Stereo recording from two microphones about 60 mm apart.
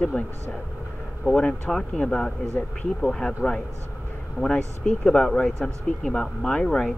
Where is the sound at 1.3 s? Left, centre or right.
Centre.